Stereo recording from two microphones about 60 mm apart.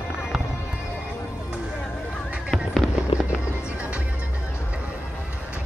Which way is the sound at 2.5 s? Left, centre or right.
Centre.